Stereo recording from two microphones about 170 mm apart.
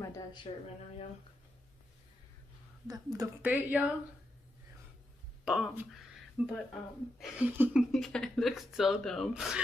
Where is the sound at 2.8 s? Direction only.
20° right (ahead or behind).